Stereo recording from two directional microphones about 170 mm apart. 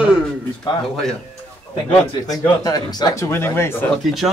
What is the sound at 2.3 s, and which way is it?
Speech, 25° left (ahead or behind).